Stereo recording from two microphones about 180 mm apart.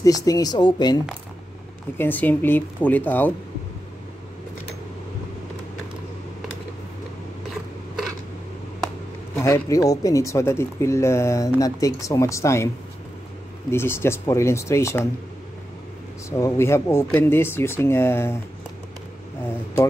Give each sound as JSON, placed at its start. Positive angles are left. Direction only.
{"t": 0.0, "sound": "speech", "side_deg": 20}
{"t": 2.0, "sound": "speech", "side_deg": 10}
{"t": 9.3, "sound": "speech", "side_deg": 15}
{"t": 13.7, "sound": "speech", "side_deg": 15}
{"t": 16.3, "sound": "speech", "side_deg": 15}